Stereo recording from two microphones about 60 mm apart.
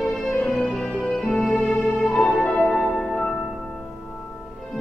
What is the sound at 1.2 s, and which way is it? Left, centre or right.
Music, centre.